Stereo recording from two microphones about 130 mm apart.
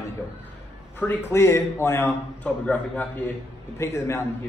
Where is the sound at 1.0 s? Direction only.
15° left (ahead or behind).